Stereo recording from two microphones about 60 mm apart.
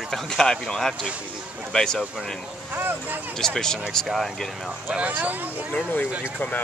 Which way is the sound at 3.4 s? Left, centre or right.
Centre.